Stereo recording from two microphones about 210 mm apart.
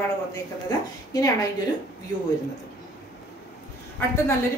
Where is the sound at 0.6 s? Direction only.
15° left (ahead or behind).